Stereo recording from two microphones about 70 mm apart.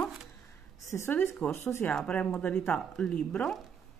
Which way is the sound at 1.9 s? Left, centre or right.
Centre.